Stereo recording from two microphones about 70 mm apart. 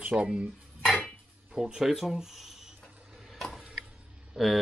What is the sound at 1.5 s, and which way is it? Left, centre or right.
Speech, centre.